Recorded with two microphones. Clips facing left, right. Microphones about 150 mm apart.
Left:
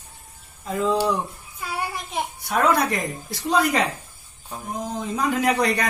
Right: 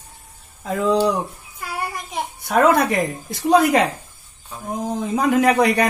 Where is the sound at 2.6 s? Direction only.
55° right (ahead or behind).